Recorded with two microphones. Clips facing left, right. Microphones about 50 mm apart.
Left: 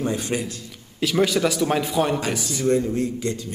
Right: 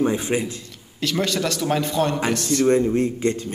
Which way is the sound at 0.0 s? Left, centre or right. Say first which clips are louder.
Right 4 dB; right.